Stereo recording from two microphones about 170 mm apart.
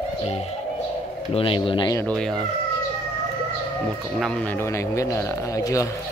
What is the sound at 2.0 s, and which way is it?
Speech, 5° left (ahead or behind).